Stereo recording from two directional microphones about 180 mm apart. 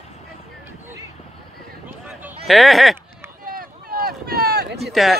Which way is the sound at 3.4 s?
50° right (ahead or behind).